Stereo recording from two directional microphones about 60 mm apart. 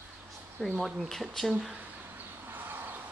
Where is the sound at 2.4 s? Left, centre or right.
Right.